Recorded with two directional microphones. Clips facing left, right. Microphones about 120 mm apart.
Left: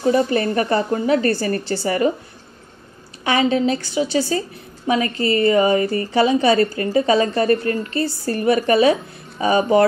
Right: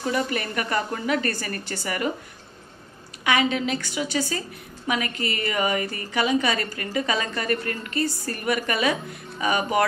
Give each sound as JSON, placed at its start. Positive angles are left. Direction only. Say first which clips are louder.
{"t": 0.0, "sound": "a woman's voice", "louder": "left 9 dB", "side_deg": 30}
{"t": 3.3, "sound": "a woman's voice", "louder": "left 5 dB", "side_deg": 30}